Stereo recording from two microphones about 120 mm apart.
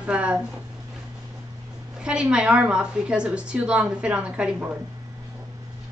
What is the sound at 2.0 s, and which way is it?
A woman's voice, 10° right (ahead or behind).